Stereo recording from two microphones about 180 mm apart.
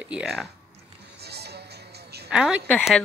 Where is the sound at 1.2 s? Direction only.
65° right (ahead or behind).